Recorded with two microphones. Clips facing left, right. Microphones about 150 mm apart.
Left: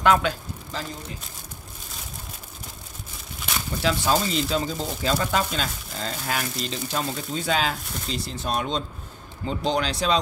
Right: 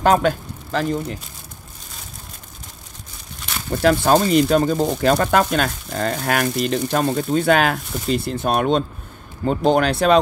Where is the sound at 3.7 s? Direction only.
55° right (ahead or behind).